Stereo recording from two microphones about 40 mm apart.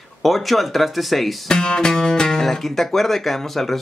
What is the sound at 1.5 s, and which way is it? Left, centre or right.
Speech, centre.